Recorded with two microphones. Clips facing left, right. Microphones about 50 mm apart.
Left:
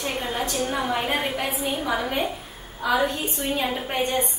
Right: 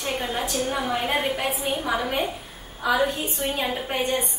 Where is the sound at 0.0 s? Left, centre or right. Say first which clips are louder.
Even; centre.